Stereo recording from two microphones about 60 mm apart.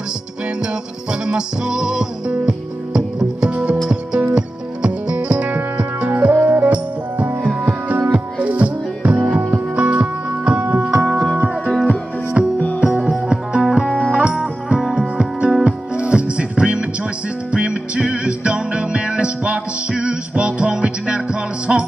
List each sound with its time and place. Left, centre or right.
1.2 s music: centre
11.3 s music: right
11.7 s music: centre
12.4 s music: centre
13.8 s music: centre
14.1 s music: centre